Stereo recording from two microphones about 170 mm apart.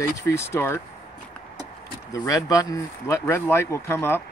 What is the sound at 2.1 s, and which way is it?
Speech, 20° left (ahead or behind).